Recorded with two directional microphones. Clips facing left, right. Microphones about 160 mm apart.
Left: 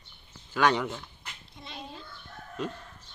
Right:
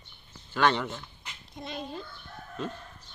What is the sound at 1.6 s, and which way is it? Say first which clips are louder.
Speech: right 7 dB; 50° right (ahead or behind).